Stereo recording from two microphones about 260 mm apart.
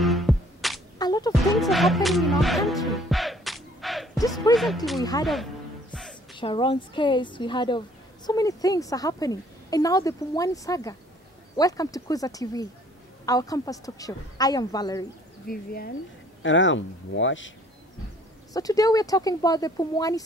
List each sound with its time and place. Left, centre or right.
0.0 s music: centre
0.9 s music: centre
1.4 s music: centre
4.5 s a woman's voice: centre
5.2 s music: centre
6.3 s a woman's voice: centre
15.4 s speech: left
16.4 s speech: left
18.5 s a woman's voice: centre